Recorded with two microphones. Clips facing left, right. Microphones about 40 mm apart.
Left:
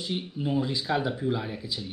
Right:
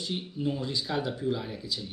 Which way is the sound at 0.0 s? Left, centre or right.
Centre.